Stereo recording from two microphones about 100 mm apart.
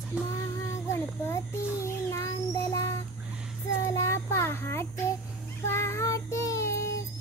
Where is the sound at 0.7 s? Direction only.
30° left (ahead or behind).